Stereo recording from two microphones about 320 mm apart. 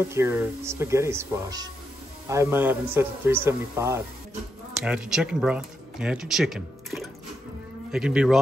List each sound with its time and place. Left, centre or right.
0.1 s a man's voice: centre